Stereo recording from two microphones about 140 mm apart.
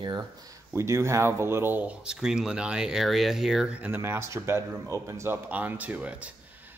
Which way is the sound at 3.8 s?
15° right (ahead or behind).